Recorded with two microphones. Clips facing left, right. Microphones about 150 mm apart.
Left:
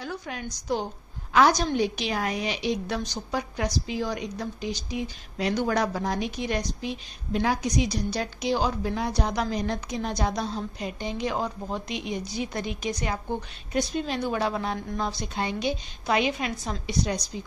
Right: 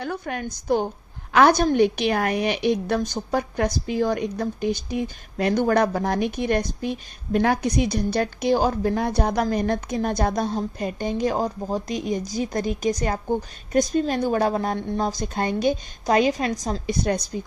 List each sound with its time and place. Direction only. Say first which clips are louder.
0.0 s a woman's voice: right 6 dB; 55° right (ahead or behind)